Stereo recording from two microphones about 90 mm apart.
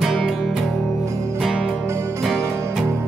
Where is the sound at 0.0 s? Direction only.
Centre (ahead or behind).